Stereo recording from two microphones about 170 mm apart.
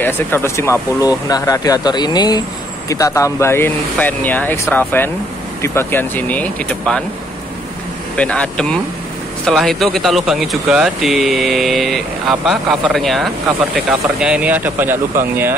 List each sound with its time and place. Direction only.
0.0 s speech: 15° left (ahead or behind)
8.2 s speech: 5° left (ahead or behind); by 15.5 s 10° right (ahead or behind)